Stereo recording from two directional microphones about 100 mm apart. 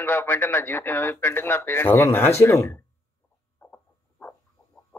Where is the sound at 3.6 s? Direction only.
20° left (ahead or behind).